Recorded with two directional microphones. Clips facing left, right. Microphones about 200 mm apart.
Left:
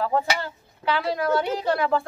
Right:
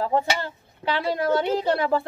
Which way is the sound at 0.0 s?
25° right (ahead or behind).